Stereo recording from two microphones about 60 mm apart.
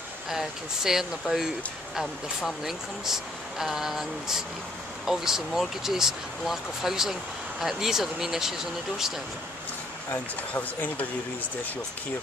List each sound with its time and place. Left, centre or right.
0.3 s speech: centre
10.5 s speech: left